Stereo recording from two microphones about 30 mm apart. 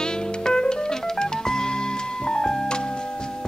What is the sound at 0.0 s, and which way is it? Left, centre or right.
Music, left.